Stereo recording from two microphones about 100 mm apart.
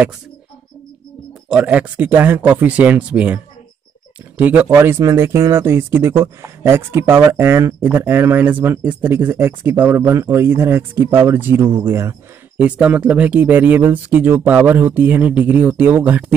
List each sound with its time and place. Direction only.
1.5 s speech: 15° right (ahead or behind)
4.4 s speech: 15° right (ahead or behind)
12.6 s speech: 15° right (ahead or behind)